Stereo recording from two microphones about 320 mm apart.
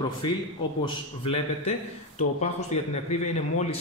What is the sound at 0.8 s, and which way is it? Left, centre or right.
A man's voice, centre.